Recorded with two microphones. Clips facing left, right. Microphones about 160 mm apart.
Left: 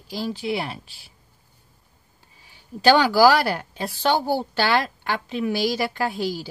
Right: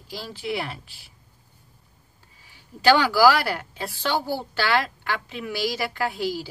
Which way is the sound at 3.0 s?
25° left (ahead or behind).